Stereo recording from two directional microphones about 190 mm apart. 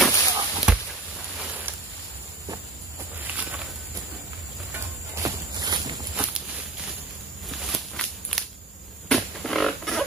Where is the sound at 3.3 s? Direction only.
10° right (ahead or behind).